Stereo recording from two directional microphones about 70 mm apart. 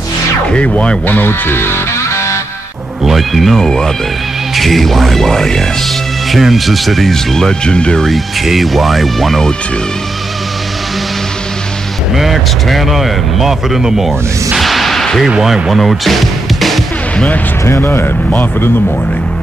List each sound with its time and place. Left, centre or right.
0.5 s speech: centre; by 2.3 s left
3.0 s speech: centre
8.1 s speech: centre
12.2 s speech: centre
15.3 s music: centre
17.6 s speech: left